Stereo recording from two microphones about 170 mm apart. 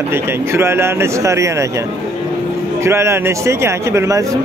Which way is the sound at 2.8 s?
15° right (ahead or behind).